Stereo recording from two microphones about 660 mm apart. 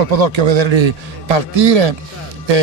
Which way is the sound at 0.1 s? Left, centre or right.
Right.